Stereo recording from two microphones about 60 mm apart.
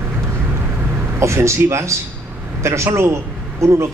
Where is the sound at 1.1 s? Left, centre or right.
Right.